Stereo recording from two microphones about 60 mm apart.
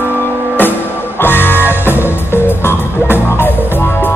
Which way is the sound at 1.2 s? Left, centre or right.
Left.